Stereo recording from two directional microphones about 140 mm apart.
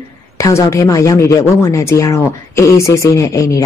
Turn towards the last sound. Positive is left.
turn(degrees=25)  # may be behind; listen again after turning